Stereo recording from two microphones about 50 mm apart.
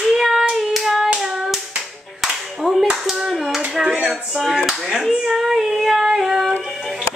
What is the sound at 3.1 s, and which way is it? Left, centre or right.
Hands, centre.